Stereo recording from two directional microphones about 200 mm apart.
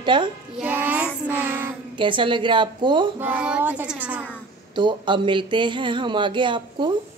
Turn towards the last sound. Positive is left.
turn(degrees=-25)  # may be behind; listen again after turning